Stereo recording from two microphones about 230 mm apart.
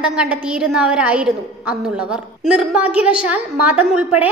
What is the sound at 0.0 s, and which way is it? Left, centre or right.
A woman's voice, centre.